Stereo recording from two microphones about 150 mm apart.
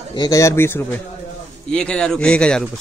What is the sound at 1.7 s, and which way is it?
Speech, 5° left (ahead or behind).